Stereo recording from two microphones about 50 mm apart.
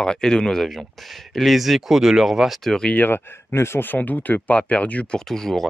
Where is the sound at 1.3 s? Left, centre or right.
Centre.